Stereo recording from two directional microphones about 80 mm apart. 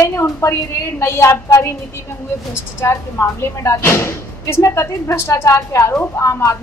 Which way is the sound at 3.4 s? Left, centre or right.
Left.